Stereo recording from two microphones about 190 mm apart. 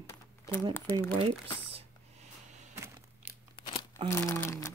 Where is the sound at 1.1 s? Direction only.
25° right (ahead or behind).